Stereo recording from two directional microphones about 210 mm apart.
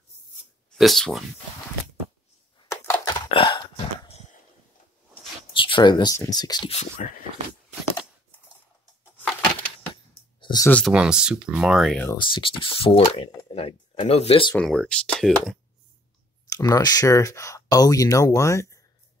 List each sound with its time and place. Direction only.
0.7 s speech: centre (ahead or behind)
2.7 s a sound: 15° left (ahead or behind)
5.5 s speech: 25° left (ahead or behind)
10.4 s a sound: 20° left (ahead or behind)
10.9 s speech: 5° right (ahead or behind)
12.1 s speech: 25° left (ahead or behind)
14.6 s speech: 5° left (ahead or behind)
16.4 s speech: 15° left (ahead or behind)